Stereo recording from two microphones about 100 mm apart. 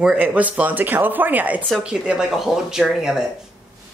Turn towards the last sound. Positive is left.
turn(degrees=-5)  # may be behind; listen again after turning